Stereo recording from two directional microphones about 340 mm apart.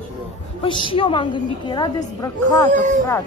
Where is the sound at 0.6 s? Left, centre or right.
Centre.